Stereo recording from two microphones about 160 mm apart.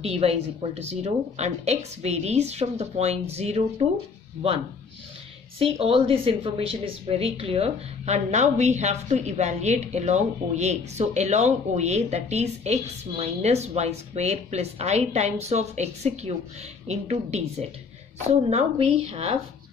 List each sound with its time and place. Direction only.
0.0 s a woman's voice: 40° right (ahead or behind)
5.6 s a woman's voice: 35° right (ahead or behind)